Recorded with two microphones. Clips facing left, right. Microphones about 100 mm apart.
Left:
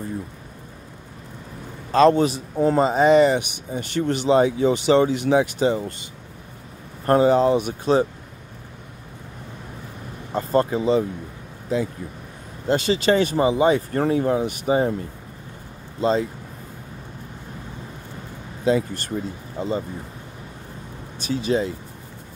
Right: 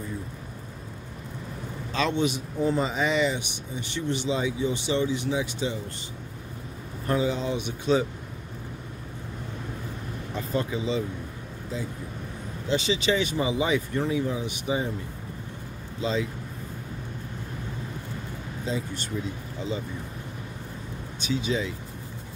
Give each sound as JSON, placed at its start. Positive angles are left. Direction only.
{"t": 1.9, "sound": "a man's voice", "side_deg": 45}
{"t": 7.1, "sound": "speech", "side_deg": 55}
{"t": 10.3, "sound": "speech", "side_deg": 50}
{"t": 11.7, "sound": "speech", "side_deg": 70}
{"t": 12.6, "sound": "speech", "side_deg": 50}
{"t": 16.0, "sound": "speech", "side_deg": 45}
{"t": 18.6, "sound": "speech", "side_deg": 65}
{"t": 19.0, "sound": "speech", "side_deg": 45}
{"t": 21.5, "sound": "speech", "side_deg": 45}